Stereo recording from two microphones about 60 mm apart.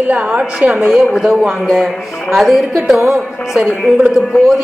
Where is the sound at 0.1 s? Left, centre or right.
Right.